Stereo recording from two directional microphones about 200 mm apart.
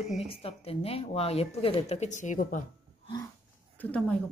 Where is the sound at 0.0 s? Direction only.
Centre (ahead or behind).